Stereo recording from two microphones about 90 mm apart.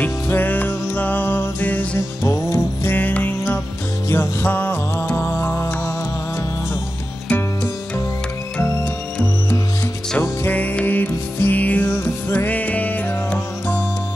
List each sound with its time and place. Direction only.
0.0 s music: 20° left (ahead or behind)
2.2 s music: 30° left (ahead or behind)
7.2 s music: 25° left (ahead or behind)
10.2 s music: 20° left (ahead or behind)